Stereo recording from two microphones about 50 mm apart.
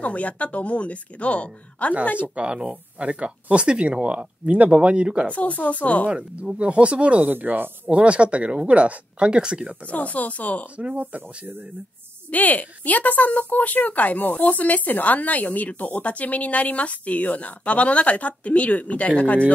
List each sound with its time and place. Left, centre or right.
0.0 s speech: left
2.1 s speech: right
5.6 s speech: left
6.6 s speech: right
7.4 s speech: right
7.9 s speech: right
9.8 s a woman's voice: left
10.8 s speech: right
12.3 s a woman's voice: left